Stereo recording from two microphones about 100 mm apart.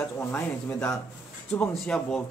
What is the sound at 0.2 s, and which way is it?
Speech, 15° left (ahead or behind).